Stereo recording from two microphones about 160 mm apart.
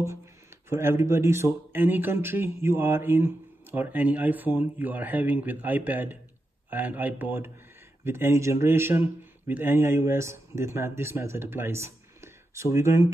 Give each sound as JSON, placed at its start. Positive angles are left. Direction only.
{"t": 0.7, "sound": "a man's voice", "side_deg": -15}